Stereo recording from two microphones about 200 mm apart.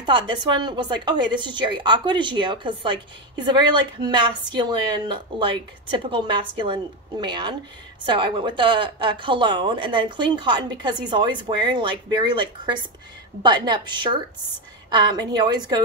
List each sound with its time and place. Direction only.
0.0 s a woman's voice: 25° right (ahead or behind)